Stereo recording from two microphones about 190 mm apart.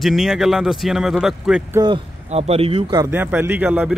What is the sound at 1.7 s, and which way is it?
Speech, 20° right (ahead or behind).